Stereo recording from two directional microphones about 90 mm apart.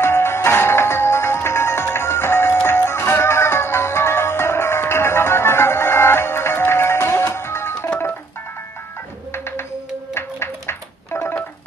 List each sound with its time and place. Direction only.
0.0 s music: 30° left (ahead or behind)
10.1 s telephone: 30° left (ahead or behind)